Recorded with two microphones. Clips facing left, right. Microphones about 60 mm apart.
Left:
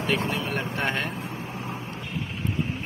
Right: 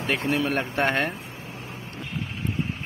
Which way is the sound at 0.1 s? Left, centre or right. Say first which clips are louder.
Right 4 dB; right.